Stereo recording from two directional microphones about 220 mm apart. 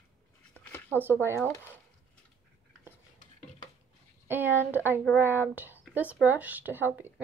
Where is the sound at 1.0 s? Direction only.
10° right (ahead or behind).